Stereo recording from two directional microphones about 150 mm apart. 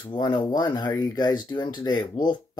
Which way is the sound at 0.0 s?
30° left (ahead or behind).